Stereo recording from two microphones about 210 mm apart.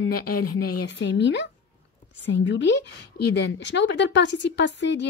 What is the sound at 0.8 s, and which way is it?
A woman's voice, 55° left (ahead or behind).